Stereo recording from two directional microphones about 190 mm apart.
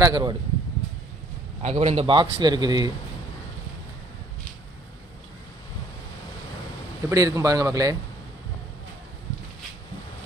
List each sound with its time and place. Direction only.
0.0 s a man's voice: 20° right (ahead or behind)
1.6 s a man's voice: 35° right (ahead or behind)
7.1 s speech: 15° right (ahead or behind)